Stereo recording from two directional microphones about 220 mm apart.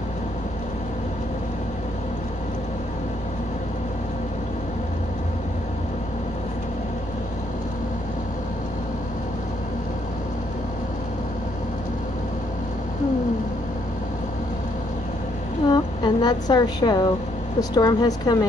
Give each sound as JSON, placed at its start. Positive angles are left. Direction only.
{"t": 15.7, "sound": "a woman's voice", "side_deg": 20}